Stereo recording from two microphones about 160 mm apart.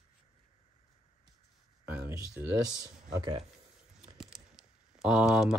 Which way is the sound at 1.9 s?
10° right (ahead or behind).